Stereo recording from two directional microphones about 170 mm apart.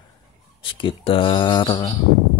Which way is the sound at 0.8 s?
30° left (ahead or behind).